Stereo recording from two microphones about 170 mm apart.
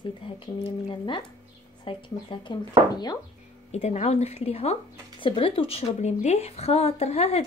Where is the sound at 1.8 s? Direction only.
30° left (ahead or behind).